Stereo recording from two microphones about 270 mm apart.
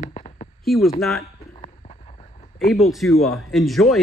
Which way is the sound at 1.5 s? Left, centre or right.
Left.